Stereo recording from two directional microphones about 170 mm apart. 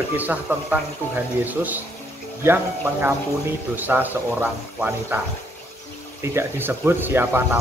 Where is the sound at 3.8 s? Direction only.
10° right (ahead or behind).